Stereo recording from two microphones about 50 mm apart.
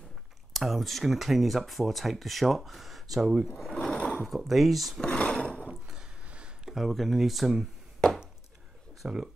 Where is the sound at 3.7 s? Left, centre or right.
Centre.